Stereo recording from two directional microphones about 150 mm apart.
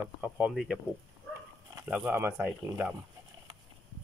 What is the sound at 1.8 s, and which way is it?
Speech, 5° right (ahead or behind).